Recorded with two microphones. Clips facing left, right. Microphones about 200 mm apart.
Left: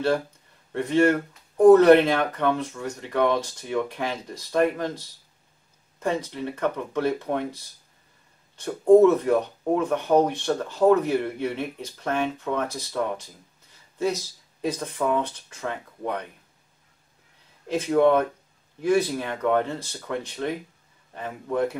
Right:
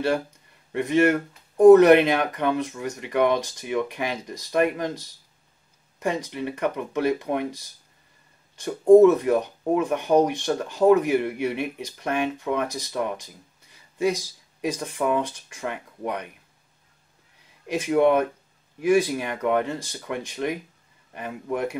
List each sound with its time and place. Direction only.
0.7 s speech: 15° right (ahead or behind)
17.6 s speech: 15° right (ahead or behind)